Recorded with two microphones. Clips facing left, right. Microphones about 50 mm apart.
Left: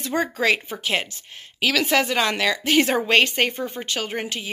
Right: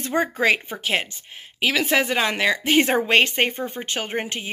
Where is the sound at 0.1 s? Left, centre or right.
Right.